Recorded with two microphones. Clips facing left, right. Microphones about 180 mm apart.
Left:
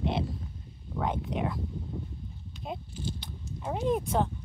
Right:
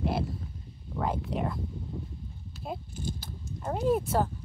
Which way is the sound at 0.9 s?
Centre (ahead or behind).